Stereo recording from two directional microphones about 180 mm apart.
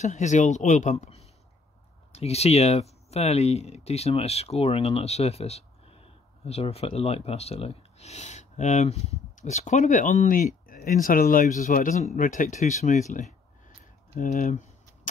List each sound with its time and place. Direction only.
0.0 s speech: 40° left (ahead or behind)